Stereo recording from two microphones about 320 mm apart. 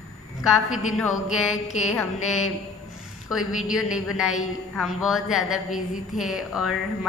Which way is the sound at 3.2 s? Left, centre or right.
Centre.